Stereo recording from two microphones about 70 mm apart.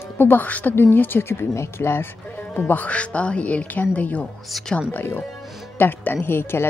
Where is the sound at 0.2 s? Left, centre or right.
Left.